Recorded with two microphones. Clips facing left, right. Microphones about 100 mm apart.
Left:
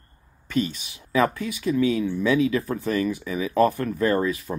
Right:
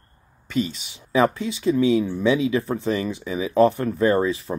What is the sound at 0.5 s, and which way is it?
Speech, 20° right (ahead or behind).